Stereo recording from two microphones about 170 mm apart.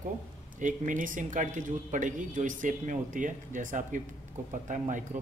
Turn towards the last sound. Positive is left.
turn(degrees=-45)  # may be behind; listen again after turning